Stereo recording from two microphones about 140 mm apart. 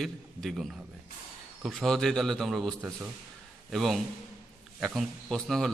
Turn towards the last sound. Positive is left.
turn(degrees=0)  # may be behind; listen again after turning